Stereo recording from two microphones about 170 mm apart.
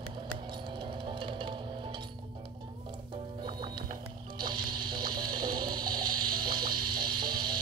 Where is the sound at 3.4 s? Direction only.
30° right (ahead or behind).